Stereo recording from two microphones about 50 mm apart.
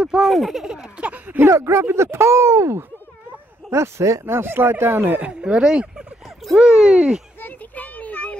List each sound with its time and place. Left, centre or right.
0.2 s speech: centre; by 1.2 s right
1.2 s speech: right
1.5 s speech: right
3.7 s speech: right
4.4 s speech: right
5.3 s speech: centre
6.2 s a sound: centre
6.6 s speech: centre
7.3 s child singing: left